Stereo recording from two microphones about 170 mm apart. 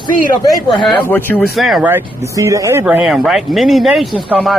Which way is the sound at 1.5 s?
Centre (ahead or behind).